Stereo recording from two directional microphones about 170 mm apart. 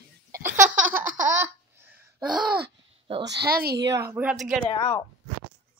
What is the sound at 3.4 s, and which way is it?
Speech, 65° right (ahead or behind).